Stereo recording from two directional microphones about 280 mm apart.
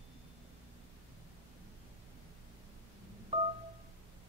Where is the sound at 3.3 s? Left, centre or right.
Right.